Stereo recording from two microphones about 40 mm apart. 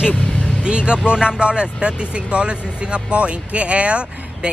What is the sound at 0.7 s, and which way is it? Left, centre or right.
Speech, right.